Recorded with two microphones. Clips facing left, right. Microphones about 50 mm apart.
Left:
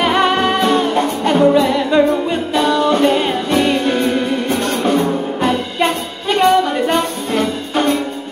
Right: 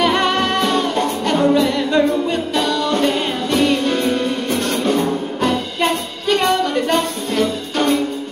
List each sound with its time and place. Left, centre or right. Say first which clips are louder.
0.0 s music: left 2 dB; centre
5.4 s music: left 1 dB; centre